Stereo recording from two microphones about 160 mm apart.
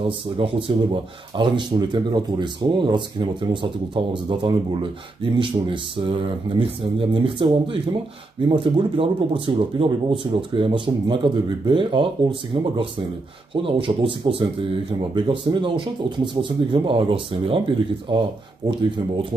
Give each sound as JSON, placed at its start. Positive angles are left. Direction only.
{"t": 0.0, "sound": "speech", "side_deg": -35}